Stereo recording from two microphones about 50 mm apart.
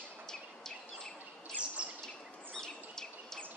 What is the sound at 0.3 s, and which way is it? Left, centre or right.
Bird, centre.